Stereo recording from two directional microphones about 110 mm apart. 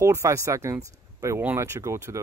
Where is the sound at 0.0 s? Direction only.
25° right (ahead or behind).